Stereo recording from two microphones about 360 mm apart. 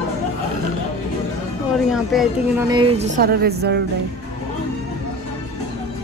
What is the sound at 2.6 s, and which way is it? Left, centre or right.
Speech, centre.